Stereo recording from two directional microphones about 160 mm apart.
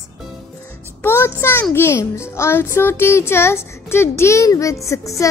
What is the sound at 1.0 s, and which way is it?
A child's voice, 15° left (ahead or behind).